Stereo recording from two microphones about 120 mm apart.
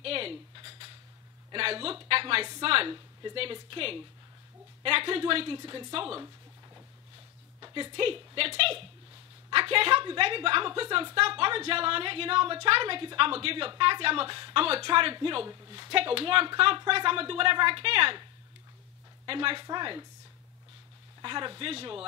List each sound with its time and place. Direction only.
0.0 s a sound: 50° right (ahead or behind)
1.5 s a woman's voice: 50° right (ahead or behind)
7.6 s a woman's voice: 45° right (ahead or behind)
19.2 s a woman's voice: 50° right (ahead or behind)
21.2 s a woman's voice: 40° right (ahead or behind)